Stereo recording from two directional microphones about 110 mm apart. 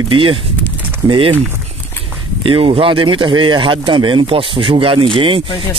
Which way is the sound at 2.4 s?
55° right (ahead or behind).